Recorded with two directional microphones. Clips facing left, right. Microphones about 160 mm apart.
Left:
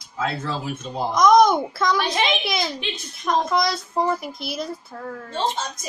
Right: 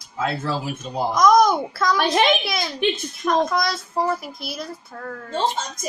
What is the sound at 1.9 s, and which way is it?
Speech, 55° right (ahead or behind).